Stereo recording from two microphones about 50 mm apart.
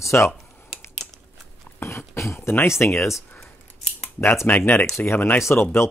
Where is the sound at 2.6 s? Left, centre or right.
Left.